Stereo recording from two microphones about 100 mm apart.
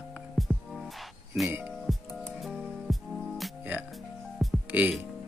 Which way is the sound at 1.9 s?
Centre (ahead or behind).